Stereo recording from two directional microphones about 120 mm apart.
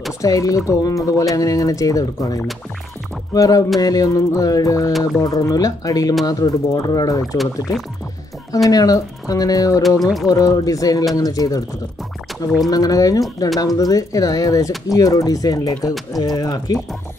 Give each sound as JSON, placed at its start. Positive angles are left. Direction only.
{"t": 0.2, "sound": "music", "side_deg": 30}
{"t": 6.2, "sound": "speech", "side_deg": 30}
{"t": 8.6, "sound": "speech", "side_deg": 30}
{"t": 9.8, "sound": "music", "side_deg": 0}
{"t": 10.2, "sound": "music", "side_deg": 30}
{"t": 11.1, "sound": "speech", "side_deg": 30}
{"t": 12.6, "sound": "music", "side_deg": 30}
{"t": 16.2, "sound": "speech", "side_deg": 30}